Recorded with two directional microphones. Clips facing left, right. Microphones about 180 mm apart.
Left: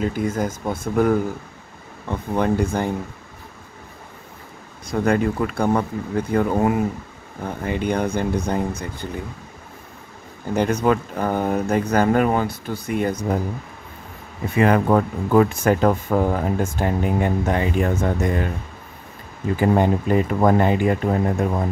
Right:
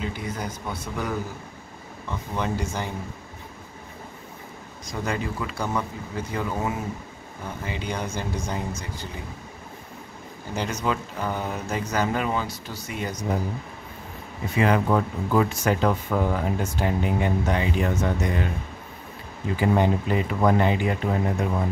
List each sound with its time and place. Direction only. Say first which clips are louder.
0.0 s speech: left 9 dB; 45° left (ahead or behind)
4.8 s speech: left 9 dB; 55° left (ahead or behind)
10.5 s speech: left 8 dB; 55° left (ahead or behind)
14.5 s speech: left 5 dB; 50° left (ahead or behind)
19.5 s speech: left 4 dB; 45° left (ahead or behind)